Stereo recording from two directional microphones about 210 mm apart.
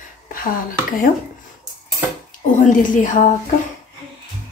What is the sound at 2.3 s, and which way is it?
A woman's voice, 40° left (ahead or behind).